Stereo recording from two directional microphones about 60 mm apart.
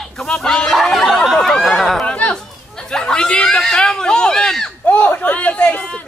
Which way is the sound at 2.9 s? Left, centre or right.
Centre.